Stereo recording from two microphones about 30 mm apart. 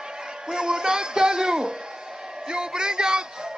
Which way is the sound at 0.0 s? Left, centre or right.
Right.